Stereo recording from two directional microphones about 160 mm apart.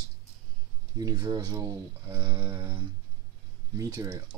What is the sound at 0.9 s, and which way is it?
Speech, 25° right (ahead or behind).